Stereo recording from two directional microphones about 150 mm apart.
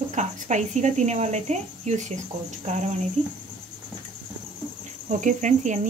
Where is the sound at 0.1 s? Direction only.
55° right (ahead or behind).